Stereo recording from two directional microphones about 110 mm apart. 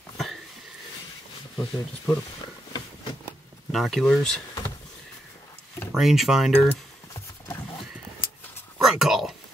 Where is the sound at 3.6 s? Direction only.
Centre (ahead or behind).